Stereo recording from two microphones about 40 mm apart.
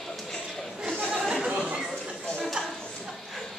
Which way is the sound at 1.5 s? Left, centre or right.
Right.